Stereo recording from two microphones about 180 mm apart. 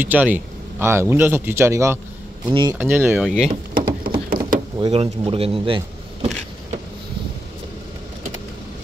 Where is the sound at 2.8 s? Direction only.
10° right (ahead or behind).